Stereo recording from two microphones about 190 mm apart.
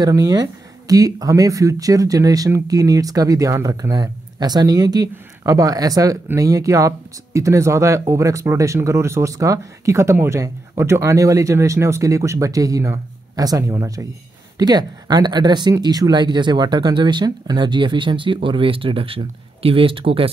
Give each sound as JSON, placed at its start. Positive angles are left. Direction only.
{"t": 0.0, "sound": "speech", "side_deg": -20}